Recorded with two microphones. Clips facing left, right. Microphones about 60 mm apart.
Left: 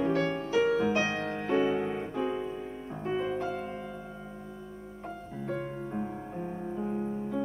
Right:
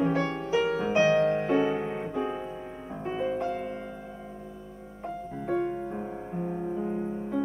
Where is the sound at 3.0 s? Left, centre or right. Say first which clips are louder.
Right 2 dB; centre.